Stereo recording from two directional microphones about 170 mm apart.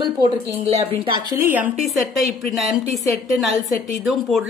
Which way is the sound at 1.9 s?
Centre (ahead or behind).